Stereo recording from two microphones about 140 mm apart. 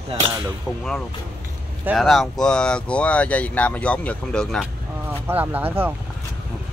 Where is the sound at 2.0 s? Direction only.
Centre (ahead or behind).